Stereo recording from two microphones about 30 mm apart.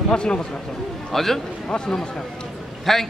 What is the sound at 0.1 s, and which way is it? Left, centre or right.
Speech, left.